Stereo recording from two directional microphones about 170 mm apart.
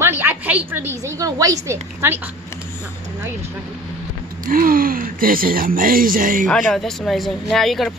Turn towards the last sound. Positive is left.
turn(degrees=0)  # may be behind; listen again after turning